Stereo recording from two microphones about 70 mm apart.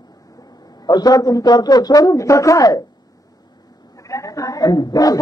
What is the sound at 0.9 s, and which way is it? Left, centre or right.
A man's voice, left.